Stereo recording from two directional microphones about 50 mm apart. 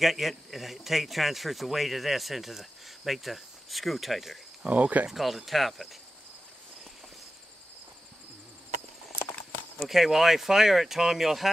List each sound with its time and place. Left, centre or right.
0.0 s speech: centre
4.6 s speech: right
5.1 s speech: centre
9.2 s clip-clop: left
9.8 s speech: centre